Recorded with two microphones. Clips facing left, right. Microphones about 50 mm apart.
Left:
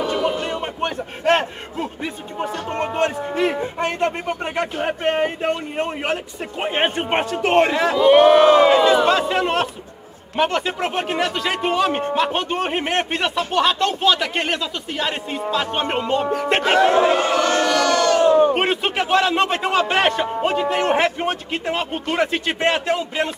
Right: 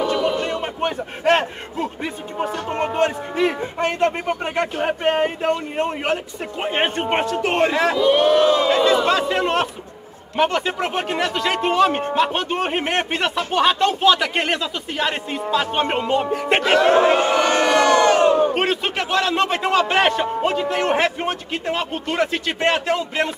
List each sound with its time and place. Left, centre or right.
0.4 s music: centre
2.3 s a man's voice: centre
8.0 s speech: left
9.0 s speech: centre
16.6 s speech: centre
16.9 s speech: right
18.5 s a man's voice: centre